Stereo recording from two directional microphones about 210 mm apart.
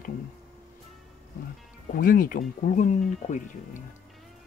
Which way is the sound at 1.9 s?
40° left (ahead or behind).